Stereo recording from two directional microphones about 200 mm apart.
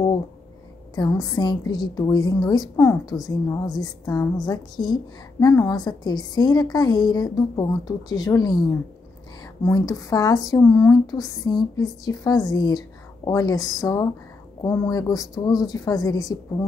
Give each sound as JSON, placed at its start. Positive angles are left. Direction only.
{"t": 0.9, "sound": "a woman's voice", "side_deg": 20}